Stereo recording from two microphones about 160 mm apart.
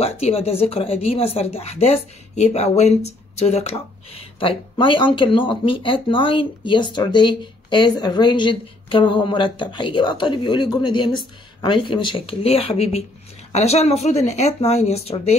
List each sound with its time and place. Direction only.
0.0 s speech: 40° left (ahead or behind)